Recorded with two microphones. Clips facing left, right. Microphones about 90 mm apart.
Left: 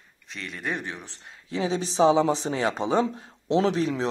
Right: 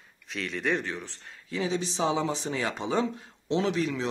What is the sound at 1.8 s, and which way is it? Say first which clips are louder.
Speech: left 12 dB; 40° left (ahead or behind).